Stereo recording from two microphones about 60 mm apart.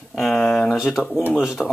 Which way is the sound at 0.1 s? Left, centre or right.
Centre.